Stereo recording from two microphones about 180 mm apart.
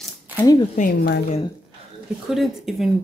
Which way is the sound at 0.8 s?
55° left (ahead or behind).